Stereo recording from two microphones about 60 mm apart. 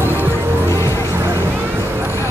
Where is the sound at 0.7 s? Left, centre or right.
Left.